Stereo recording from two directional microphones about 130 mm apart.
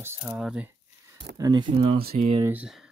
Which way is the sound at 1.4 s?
35° right (ahead or behind).